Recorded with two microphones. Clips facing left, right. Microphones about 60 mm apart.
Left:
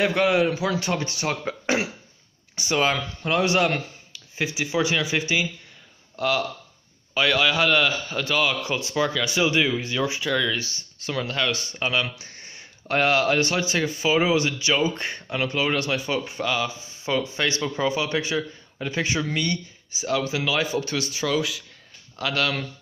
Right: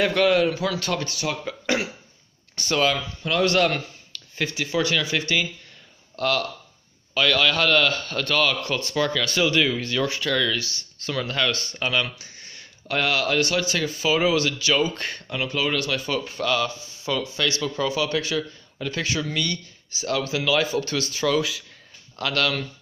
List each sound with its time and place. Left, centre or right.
0.1 s a man's voice: centre
1.2 s speech: left
2.5 s speech: centre
2.9 s speech: left
3.3 s a man's voice: centre
7.2 s a man's voice: centre
10.5 s speech: left
11.2 s a man's voice: centre
12.3 s speech: left
15.3 s speech: left; by 22.5 s centre